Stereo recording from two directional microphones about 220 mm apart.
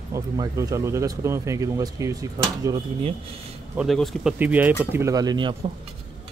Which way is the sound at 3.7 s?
Centre (ahead or behind).